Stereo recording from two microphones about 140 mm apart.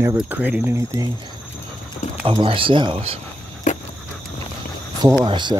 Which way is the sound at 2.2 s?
40° right (ahead or behind).